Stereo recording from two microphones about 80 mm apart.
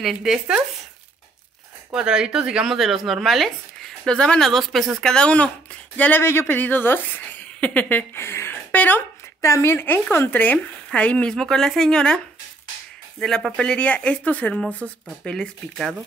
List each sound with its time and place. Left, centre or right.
0.0 s speech: centre
1.9 s speech: centre; by 8.5 s left
8.7 s a sound: left
9.4 s speech: left; by 12.2 s centre
13.2 s speech: centre